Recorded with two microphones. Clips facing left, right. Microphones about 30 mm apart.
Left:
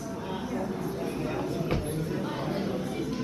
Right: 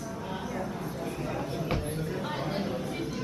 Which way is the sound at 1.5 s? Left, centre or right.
Centre.